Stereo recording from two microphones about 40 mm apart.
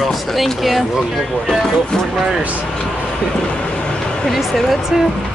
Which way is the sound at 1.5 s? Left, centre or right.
Centre.